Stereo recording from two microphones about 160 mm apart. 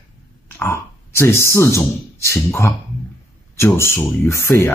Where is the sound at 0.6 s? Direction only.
15° left (ahead or behind).